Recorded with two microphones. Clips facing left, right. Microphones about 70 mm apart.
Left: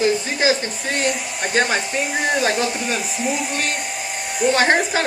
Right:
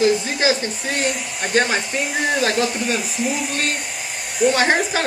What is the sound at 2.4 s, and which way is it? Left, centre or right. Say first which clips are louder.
Speech: even; centre.